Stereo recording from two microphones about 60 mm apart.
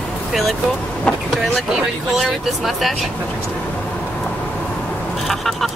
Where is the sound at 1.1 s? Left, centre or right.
Left.